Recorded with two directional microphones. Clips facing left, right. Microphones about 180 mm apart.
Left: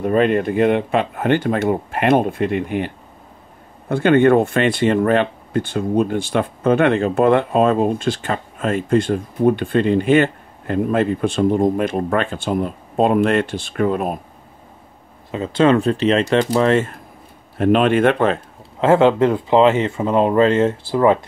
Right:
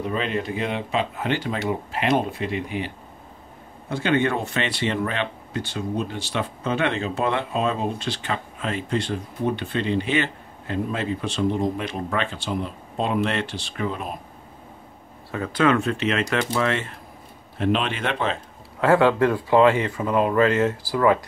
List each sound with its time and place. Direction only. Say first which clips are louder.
0.0 s speech: left 10 dB; 55° left (ahead or behind)
3.9 s speech: left 9 dB; 55° left (ahead or behind)
15.3 s speech: left 6 dB; 25° left (ahead or behind); by 18.4 s 50° left (ahead or behind)
18.8 s speech: left 4 dB; 20° left (ahead or behind)